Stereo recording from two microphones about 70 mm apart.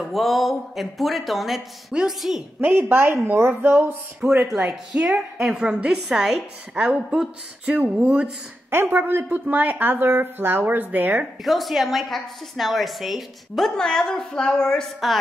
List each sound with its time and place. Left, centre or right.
0.0 s a woman's voice: centre
2.7 s a woman's voice: right
4.2 s a woman's voice: centre
11.4 s a woman's voice: centre